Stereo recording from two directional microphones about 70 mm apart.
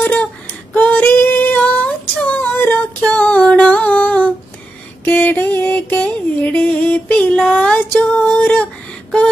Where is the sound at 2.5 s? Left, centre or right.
Left.